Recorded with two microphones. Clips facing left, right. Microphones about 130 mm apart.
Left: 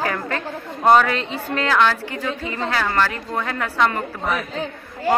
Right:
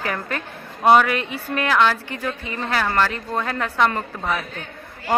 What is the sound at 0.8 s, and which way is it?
A woman's voice, 10° right (ahead or behind).